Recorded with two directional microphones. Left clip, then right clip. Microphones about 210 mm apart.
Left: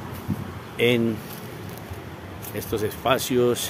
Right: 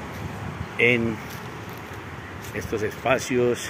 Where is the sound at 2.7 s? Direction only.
10° left (ahead or behind).